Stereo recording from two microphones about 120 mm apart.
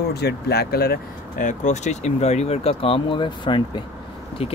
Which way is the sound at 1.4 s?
85° left.